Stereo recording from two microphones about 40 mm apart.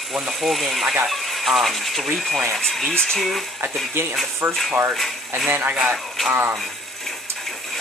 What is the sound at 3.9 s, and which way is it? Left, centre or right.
Speech, right.